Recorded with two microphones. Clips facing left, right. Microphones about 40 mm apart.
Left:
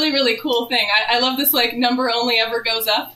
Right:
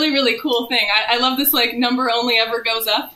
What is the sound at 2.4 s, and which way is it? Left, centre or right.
Speech, right.